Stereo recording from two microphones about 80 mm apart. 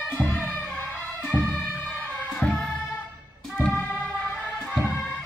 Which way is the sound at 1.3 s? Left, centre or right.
Left.